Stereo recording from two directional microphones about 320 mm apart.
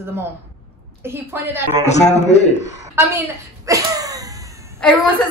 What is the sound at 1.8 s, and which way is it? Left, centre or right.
A man's voice, left.